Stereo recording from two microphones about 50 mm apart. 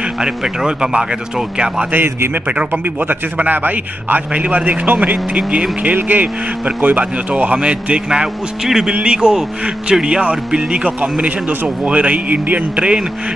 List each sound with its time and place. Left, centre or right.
0.2 s speech: centre
1.9 s a man's voice: right
2.7 s a man's voice: right
7.5 s speech: right